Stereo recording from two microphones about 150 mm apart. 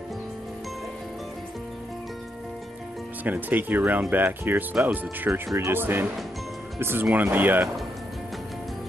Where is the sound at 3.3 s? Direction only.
10° right (ahead or behind).